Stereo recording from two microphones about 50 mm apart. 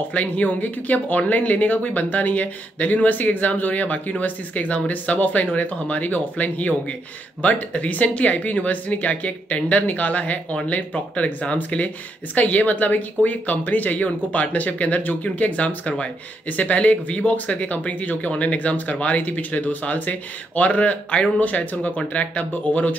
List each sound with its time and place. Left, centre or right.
0.1 s speech: left